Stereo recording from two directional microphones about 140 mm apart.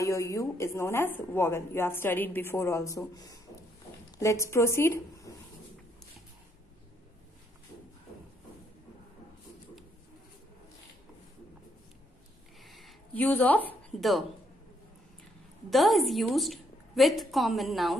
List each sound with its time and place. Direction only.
0.0 s speech: 20° left (ahead or behind)
12.6 s a sound: centre (ahead or behind)
13.1 s a woman's voice: 10° left (ahead or behind)
15.7 s a woman's voice: centre (ahead or behind)